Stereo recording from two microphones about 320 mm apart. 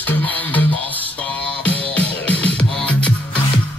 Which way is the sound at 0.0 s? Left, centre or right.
Centre.